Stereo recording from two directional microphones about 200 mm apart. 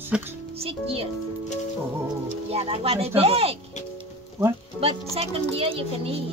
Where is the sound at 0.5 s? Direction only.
30° right (ahead or behind).